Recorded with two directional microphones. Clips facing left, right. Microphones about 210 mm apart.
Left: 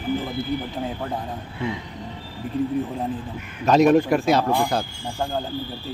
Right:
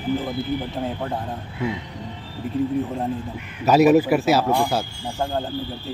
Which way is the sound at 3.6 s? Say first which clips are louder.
Right 1 dB; 5° right (ahead or behind).